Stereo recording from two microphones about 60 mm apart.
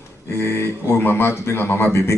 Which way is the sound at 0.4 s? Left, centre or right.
Left.